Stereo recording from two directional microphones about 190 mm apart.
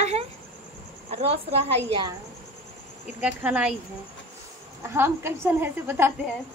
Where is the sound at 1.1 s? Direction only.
30° right (ahead or behind).